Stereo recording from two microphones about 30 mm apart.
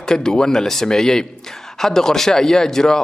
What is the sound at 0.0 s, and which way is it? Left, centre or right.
A man's voice, left.